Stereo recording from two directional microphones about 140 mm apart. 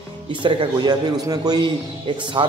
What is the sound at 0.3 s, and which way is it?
A man's voice, 35° right (ahead or behind).